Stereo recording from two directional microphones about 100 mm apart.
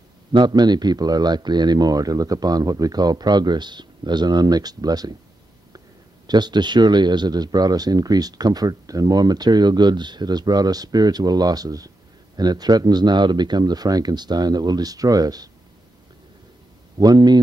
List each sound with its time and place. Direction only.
0.3 s speech: 50° right (ahead or behind)
6.2 s speech: 45° right (ahead or behind)
17.0 s speech: 45° right (ahead or behind)